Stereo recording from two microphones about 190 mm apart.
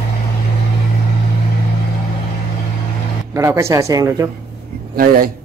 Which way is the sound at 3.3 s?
15° right (ahead or behind).